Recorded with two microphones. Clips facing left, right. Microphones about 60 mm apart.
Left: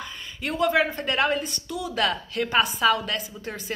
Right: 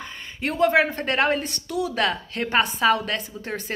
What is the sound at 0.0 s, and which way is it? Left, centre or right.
A woman's voice, right.